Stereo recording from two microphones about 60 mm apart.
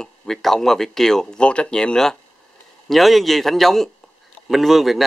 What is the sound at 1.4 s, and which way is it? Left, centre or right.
Speech, centre.